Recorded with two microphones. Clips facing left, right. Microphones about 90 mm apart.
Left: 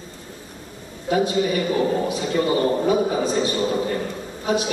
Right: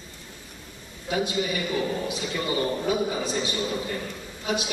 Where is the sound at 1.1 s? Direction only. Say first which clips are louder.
Left 7 dB; 40° left (ahead or behind).